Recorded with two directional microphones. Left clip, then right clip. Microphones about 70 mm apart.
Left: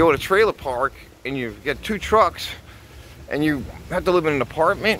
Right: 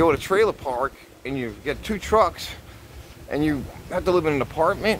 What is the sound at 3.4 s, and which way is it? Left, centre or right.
Speech, centre.